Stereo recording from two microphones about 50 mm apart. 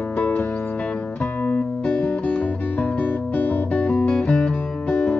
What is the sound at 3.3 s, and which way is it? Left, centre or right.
Guitar, left.